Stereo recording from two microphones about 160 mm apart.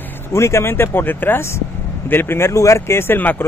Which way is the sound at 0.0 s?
15° left (ahead or behind).